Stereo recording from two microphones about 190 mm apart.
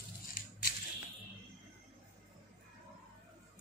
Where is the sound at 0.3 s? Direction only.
55° left (ahead or behind).